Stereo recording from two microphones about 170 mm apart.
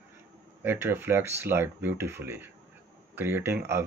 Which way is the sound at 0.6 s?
10° right (ahead or behind).